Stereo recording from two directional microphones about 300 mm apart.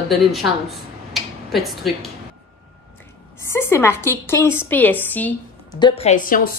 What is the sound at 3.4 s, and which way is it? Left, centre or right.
A woman's voice, centre.